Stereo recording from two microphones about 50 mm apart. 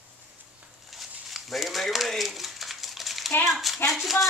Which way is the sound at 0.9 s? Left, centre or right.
Centre.